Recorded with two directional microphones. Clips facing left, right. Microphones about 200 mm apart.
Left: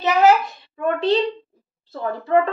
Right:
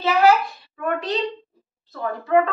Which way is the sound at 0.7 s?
30° left (ahead or behind).